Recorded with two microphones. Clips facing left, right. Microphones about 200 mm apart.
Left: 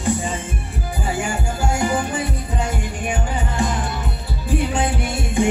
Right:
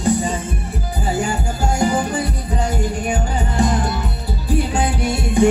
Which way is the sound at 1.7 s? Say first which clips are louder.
Right 4 dB; 35° right (ahead or behind).